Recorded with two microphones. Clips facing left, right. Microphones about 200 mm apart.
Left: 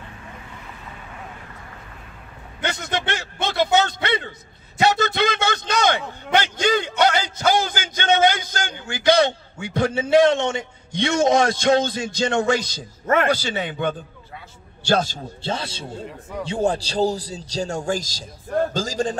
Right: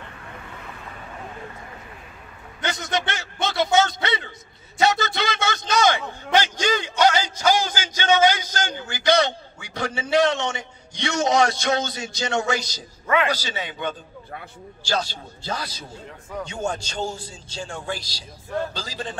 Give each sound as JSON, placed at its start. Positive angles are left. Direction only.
{"t": 2.6, "sound": "a sound", "side_deg": 60}
{"t": 5.0, "sound": "a man's voice", "side_deg": 55}
{"t": 15.4, "sound": "a man's voice", "side_deg": 25}